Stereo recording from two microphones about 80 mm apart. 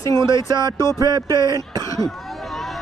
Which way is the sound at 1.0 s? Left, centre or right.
Right.